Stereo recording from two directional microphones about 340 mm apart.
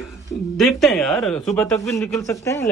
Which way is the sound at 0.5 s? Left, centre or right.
Centre.